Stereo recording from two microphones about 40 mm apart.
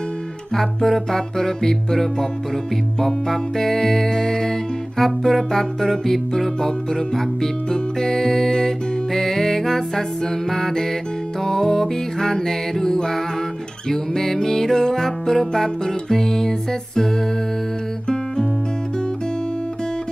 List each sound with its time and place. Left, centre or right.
0.6 s music: centre